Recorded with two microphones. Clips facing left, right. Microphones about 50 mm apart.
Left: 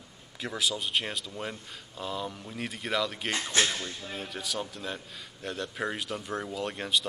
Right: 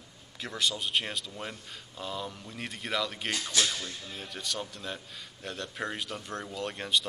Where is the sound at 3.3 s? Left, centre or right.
Left.